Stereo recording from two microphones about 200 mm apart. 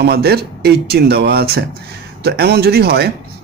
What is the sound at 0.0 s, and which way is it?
A man's voice, 55° right (ahead or behind).